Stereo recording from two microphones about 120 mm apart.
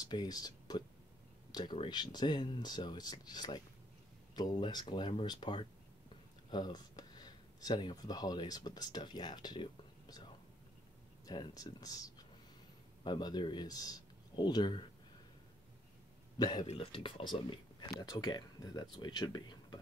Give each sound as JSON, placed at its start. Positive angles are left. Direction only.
{"t": 0.0, "sound": "speech", "side_deg": 35}
{"t": 11.2, "sound": "speech", "side_deg": 35}
{"t": 16.3, "sound": "speech", "side_deg": 35}
{"t": 16.6, "sound": "speech", "side_deg": 50}